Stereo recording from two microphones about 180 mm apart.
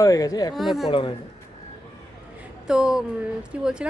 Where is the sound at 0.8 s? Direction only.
30° left (ahead or behind).